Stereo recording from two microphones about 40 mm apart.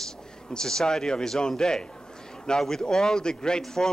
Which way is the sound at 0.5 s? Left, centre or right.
Centre.